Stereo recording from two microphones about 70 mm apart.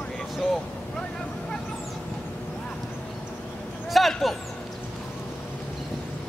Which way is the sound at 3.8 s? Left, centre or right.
Centre.